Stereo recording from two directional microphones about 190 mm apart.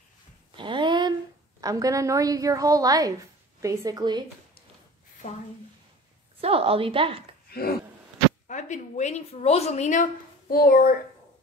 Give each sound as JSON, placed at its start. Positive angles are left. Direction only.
{"t": 0.6, "sound": "a sound", "side_deg": -25}
{"t": 1.6, "sound": "a woman's voice", "side_deg": -20}
{"t": 5.2, "sound": "speech", "side_deg": 45}
{"t": 6.4, "sound": "a woman's voice", "side_deg": -30}
{"t": 8.5, "sound": "a woman's voice", "side_deg": 40}
{"t": 10.5, "sound": "speech", "side_deg": 50}